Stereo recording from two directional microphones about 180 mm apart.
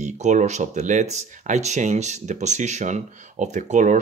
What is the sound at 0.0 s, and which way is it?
Speech, 40° right (ahead or behind).